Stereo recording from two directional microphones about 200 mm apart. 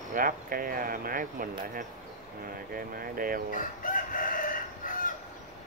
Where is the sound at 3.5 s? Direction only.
45° left (ahead or behind).